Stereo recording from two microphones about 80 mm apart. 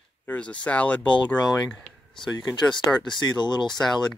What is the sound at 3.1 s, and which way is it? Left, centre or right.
Speech, left.